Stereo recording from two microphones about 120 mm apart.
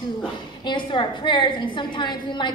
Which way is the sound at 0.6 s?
40° left (ahead or behind).